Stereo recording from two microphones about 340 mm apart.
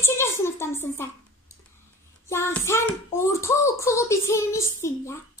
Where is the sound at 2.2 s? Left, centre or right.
Centre.